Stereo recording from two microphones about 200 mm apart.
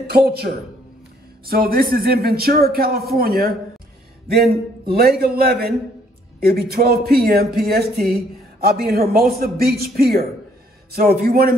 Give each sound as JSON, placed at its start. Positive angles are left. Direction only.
{"t": 1.4, "sound": "speech", "side_deg": -50}